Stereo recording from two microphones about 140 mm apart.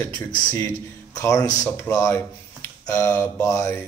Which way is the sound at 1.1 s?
20° left (ahead or behind).